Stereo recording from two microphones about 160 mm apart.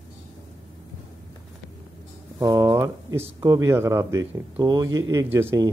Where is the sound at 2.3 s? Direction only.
20° right (ahead or behind).